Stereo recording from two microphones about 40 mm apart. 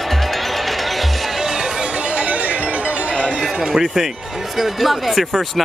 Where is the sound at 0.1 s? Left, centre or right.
Centre.